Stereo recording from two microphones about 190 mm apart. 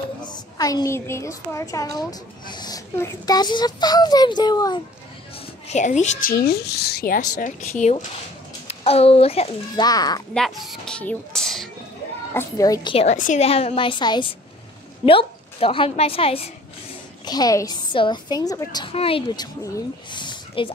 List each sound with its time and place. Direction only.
0.2 s a woman's voice: 20° left (ahead or behind)
5.7 s a woman's voice: 40° left (ahead or behind)
6.3 s a woman's voice: 55° left (ahead or behind); by 9.8 s 30° left (ahead or behind)
9.8 s a woman's voice: 20° left (ahead or behind)
10.3 s speech: centre (ahead or behind)
12.4 s a woman's voice: 20° left (ahead or behind)
12.9 s a woman's voice: 35° left (ahead or behind)